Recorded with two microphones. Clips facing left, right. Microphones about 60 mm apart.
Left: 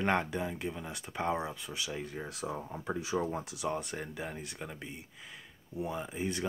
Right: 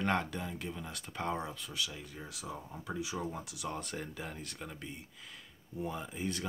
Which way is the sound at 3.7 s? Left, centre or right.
Centre.